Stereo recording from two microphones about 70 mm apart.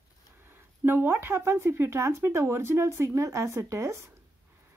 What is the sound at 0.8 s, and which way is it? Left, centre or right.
A woman's voice, right.